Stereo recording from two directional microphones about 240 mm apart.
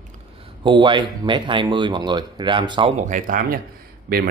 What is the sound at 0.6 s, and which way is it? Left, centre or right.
Speech, centre.